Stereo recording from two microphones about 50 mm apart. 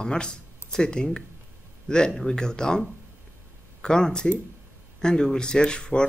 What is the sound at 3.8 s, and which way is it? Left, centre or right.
Speech, centre.